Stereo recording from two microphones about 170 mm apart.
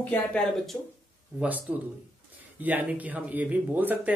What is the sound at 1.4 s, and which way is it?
Speech, 10° right (ahead or behind).